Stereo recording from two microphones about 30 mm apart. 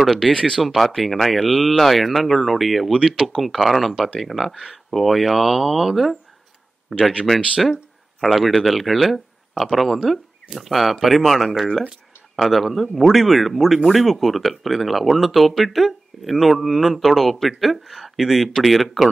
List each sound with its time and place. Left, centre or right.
0.0 s speech: centre
0.3 s speech: left
0.7 s speech: centre
7.3 s speech: centre